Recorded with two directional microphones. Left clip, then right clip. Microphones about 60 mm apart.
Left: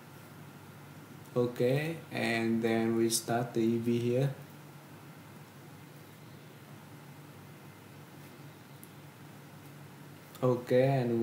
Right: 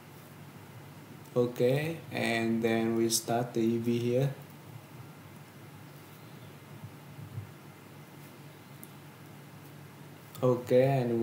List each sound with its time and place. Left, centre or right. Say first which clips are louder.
1.3 s speech: right 2 dB; centre
10.4 s speech: right 2 dB; centre